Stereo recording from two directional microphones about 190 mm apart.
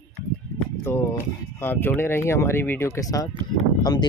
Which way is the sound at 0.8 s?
15° left (ahead or behind).